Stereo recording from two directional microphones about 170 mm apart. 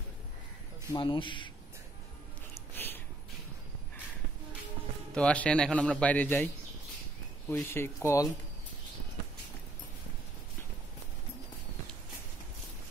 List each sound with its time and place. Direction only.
0.9 s speech: 30° left (ahead or behind)
2.7 s a sound: 10° left (ahead or behind)
5.1 s a man's voice: 5° left (ahead or behind)